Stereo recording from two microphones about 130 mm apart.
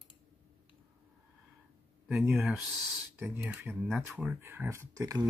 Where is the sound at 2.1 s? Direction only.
5° right (ahead or behind).